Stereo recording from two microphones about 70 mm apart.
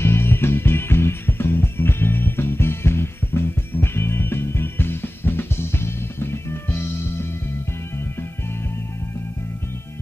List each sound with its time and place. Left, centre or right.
0.0 s music: left